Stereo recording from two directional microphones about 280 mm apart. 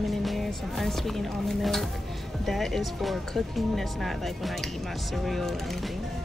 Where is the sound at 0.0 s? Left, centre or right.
Centre.